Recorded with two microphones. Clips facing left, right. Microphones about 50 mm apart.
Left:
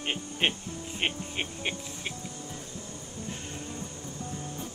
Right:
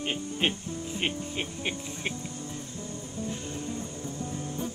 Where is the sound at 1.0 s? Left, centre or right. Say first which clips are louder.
Left 1 dB; left.